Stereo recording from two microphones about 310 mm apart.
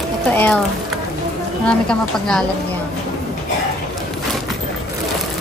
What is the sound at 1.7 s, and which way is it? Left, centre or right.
Speech, centre.